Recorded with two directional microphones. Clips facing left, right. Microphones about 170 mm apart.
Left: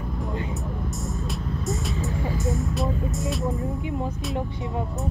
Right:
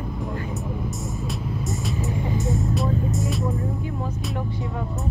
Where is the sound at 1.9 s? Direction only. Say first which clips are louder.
Right 2 dB; 20° right (ahead or behind).